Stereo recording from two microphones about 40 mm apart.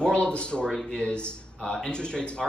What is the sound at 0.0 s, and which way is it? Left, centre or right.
A man's voice, left.